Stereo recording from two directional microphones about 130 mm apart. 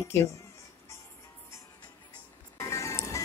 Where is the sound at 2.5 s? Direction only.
25° left (ahead or behind).